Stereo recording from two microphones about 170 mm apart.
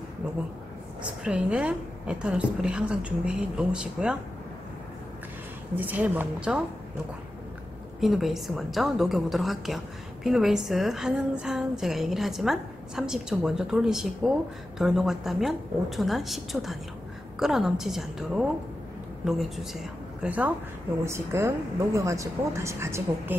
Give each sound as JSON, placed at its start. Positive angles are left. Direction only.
{"t": 1.2, "sound": "a woman's voice", "side_deg": -5}
{"t": 5.8, "sound": "a woman's voice", "side_deg": -10}
{"t": 8.0, "sound": "a woman's voice", "side_deg": 0}